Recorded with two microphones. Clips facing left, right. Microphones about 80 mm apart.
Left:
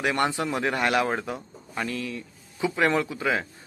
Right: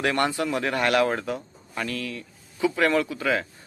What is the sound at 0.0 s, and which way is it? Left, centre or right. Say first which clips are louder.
Speech: right 1 dB; centre.